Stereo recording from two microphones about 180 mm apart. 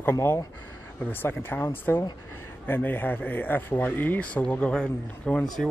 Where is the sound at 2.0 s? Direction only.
20° left (ahead or behind).